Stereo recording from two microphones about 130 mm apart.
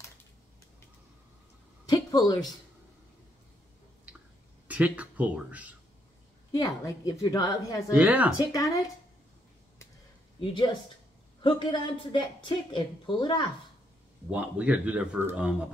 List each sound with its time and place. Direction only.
1.9 s a woman's voice: 30° left (ahead or behind)
4.6 s speech: 10° right (ahead or behind)
6.5 s a woman's voice: 25° left (ahead or behind)
7.9 s speech: 10° right (ahead or behind)
10.4 s a woman's voice: 35° left (ahead or behind)
14.3 s speech: 10° right (ahead or behind)